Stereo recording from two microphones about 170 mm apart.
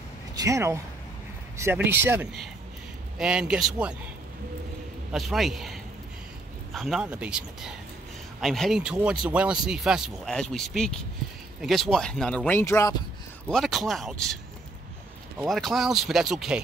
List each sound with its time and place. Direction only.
0.4 s speech: 20° right (ahead or behind)
1.9 s speech: 10° right (ahead or behind)
5.1 s speech: centre (ahead or behind); by 13.0 s 15° left (ahead or behind)
13.5 s speech: centre (ahead or behind)